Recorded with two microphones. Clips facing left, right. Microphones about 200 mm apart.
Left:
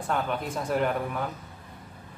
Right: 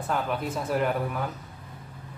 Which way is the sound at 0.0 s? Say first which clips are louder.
Even; centre (ahead or behind).